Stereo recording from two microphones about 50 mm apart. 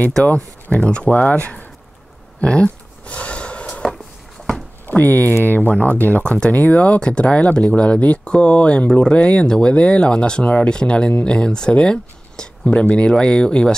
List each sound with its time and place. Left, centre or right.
0.2 s speech: left
2.4 s a sound: left
4.8 s speech: left
5.6 s speech: left
7.0 s speech: left